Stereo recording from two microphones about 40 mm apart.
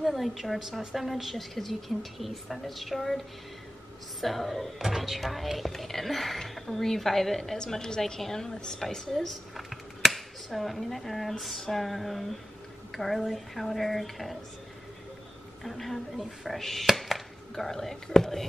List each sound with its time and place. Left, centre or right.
0.0 s a woman's voice: centre
4.2 s a woman's voice: centre
4.7 s a woman's voice: centre
15.6 s a woman's voice: centre